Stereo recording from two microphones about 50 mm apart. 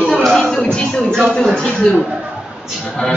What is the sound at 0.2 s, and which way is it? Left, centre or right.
Music, centre.